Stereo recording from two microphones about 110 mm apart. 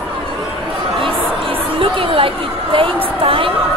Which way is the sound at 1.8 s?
55° right (ahead or behind).